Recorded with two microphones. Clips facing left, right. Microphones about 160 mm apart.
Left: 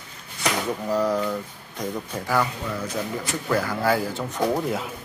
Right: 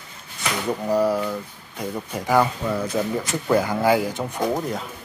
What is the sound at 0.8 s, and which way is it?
Speech, 10° right (ahead or behind).